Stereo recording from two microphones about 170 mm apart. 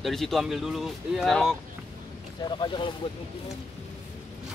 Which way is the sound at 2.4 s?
25° left (ahead or behind).